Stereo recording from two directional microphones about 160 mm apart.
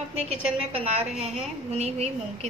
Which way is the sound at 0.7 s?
40° right (ahead or behind).